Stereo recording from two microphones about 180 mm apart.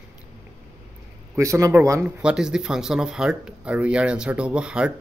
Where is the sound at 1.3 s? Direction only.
15° right (ahead or behind).